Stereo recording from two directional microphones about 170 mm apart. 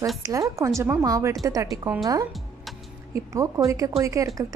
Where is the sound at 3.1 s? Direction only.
20° right (ahead or behind).